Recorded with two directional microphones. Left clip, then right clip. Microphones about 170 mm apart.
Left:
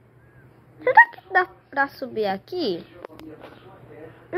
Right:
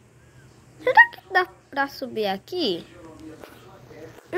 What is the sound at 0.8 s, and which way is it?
A child's voice, 20° right (ahead or behind).